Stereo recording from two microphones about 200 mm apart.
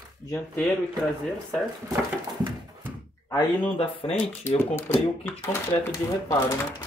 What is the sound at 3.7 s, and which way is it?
Speech, 30° left (ahead or behind).